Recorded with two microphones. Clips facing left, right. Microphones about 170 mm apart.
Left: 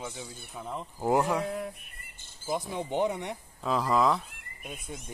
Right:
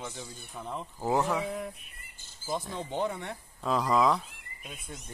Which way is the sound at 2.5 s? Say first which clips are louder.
Left 3 dB; 10° left (ahead or behind).